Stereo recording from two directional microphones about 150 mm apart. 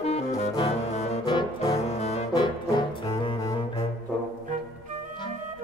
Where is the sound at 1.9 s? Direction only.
45° left (ahead or behind).